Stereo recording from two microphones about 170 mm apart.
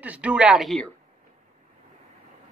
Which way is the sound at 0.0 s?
10° right (ahead or behind).